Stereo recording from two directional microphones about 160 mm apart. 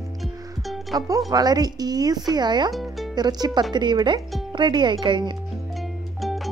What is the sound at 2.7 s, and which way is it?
Music, centre (ahead or behind).